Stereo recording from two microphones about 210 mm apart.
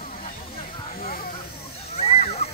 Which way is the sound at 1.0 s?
45° left (ahead or behind).